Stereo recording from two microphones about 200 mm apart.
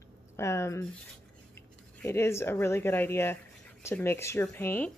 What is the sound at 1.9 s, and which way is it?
Speech, 10° left (ahead or behind).